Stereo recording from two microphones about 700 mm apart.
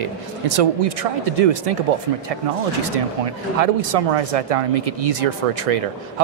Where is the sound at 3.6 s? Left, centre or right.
Right.